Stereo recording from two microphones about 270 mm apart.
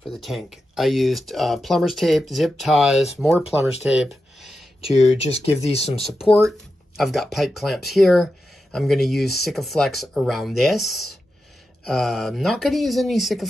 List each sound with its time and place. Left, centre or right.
0.0 s speech: centre
4.8 s speech: left
7.0 s speech: centre